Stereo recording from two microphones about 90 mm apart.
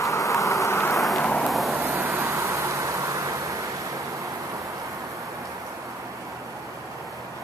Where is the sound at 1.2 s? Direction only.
15° left (ahead or behind).